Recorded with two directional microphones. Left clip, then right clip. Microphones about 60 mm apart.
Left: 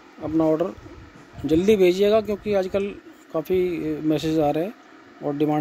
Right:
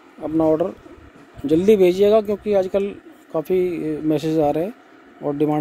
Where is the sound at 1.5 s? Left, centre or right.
Right.